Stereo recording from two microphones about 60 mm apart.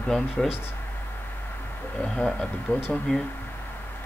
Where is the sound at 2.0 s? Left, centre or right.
Centre.